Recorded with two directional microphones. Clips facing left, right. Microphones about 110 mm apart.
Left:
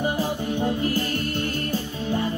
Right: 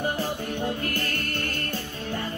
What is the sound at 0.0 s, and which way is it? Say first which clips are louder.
Music: left 3 dB; 15° left (ahead or behind).